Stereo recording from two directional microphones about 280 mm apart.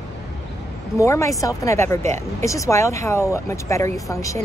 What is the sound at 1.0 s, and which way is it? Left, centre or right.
Speech, centre.